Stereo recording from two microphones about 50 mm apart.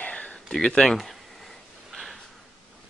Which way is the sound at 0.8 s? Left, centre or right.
Centre.